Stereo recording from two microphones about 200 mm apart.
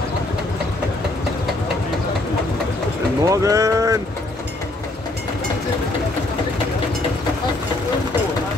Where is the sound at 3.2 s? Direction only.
15° right (ahead or behind).